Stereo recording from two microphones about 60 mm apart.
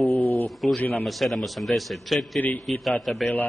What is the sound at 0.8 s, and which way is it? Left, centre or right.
Speech, left.